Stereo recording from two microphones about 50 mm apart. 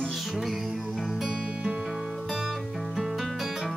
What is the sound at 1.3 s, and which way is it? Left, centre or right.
Music, centre.